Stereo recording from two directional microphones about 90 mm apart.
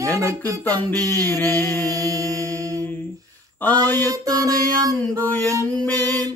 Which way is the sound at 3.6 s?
20° left (ahead or behind).